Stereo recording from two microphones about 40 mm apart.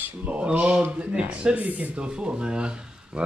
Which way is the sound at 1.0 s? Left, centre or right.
Right.